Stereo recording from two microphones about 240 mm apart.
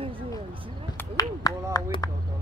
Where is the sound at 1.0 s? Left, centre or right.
Centre.